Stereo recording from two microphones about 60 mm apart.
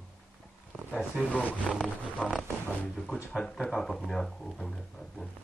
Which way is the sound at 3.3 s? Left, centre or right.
Centre.